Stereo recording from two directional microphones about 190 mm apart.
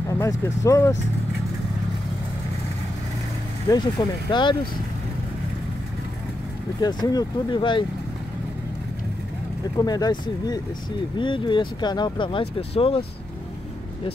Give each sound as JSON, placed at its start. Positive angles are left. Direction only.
{"t": 0.1, "sound": "speech", "side_deg": 15}
{"t": 3.7, "sound": "speech", "side_deg": 25}
{"t": 6.8, "sound": "speech", "side_deg": 20}
{"t": 9.8, "sound": "speech", "side_deg": 20}